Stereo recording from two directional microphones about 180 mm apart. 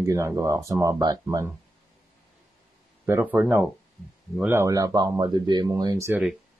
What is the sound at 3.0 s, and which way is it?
Speech, 10° right (ahead or behind).